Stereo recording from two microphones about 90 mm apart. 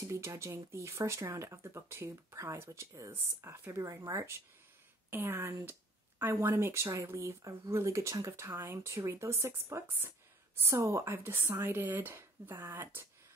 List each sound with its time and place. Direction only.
0.0 s speech: 35° right (ahead or behind)